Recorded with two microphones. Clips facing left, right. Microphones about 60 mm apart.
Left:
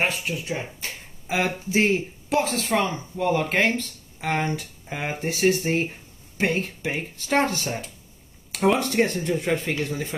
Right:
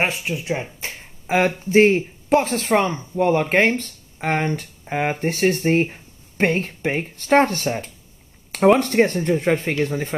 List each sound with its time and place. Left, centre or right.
0.0 s speech: right
1.2 s a sound: right
1.7 s speech: right